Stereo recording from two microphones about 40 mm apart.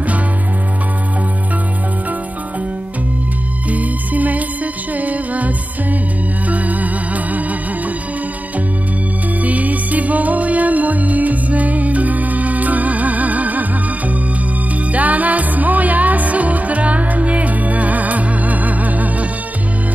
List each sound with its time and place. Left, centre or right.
3.6 s music: right
9.4 s music: right